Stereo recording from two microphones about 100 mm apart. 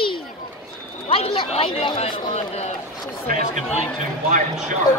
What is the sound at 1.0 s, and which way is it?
Speech, 70° left (ahead or behind).